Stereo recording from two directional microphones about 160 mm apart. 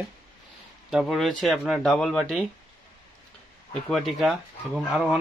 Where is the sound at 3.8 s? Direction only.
Centre (ahead or behind).